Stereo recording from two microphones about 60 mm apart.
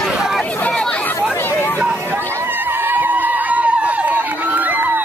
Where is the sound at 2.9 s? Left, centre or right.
Right.